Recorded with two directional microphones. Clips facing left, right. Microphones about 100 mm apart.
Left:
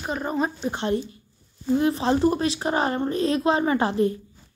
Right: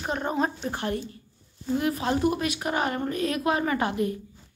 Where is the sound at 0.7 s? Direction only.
25° left (ahead or behind).